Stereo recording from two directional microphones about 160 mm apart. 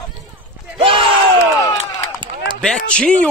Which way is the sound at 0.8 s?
35° right (ahead or behind).